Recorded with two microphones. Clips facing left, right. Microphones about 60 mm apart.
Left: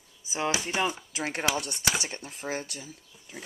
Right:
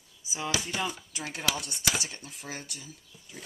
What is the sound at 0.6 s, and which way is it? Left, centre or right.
Chopping, centre.